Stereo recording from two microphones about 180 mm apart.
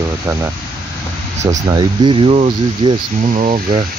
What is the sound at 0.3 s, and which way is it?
Speech, 15° right (ahead or behind).